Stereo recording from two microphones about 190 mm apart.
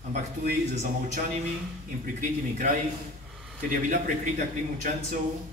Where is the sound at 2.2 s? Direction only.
45° right (ahead or behind).